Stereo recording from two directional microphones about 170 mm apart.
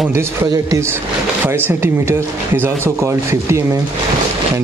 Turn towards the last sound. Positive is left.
turn(degrees=-15)  # may be behind; listen again after turning